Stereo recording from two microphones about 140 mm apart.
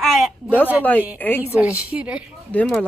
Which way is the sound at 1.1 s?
15° left (ahead or behind).